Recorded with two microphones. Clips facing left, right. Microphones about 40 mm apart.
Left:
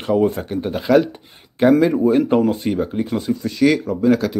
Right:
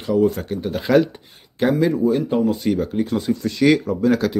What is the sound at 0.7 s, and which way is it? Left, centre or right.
Speech, centre.